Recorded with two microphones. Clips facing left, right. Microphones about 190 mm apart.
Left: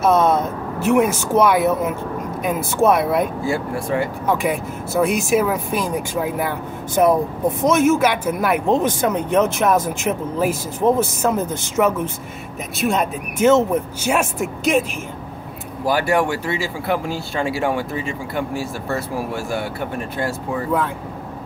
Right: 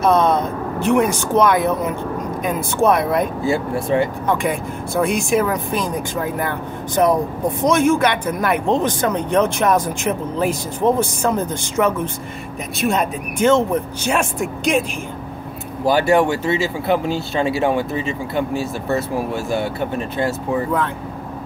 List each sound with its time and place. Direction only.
0.0 s speech: 5° left (ahead or behind)
3.4 s speech: 25° right (ahead or behind)
4.3 s speech: 5° left (ahead or behind)
15.8 s speech: 25° right (ahead or behind)